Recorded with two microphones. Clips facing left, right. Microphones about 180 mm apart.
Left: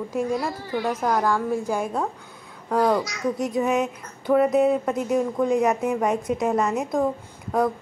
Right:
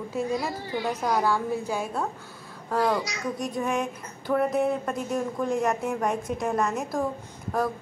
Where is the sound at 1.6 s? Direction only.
10° left (ahead or behind).